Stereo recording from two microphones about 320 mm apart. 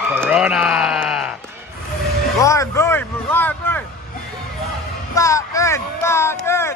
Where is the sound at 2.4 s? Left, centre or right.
Centre.